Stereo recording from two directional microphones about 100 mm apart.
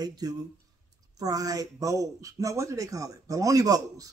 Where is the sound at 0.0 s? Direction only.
40° right (ahead or behind).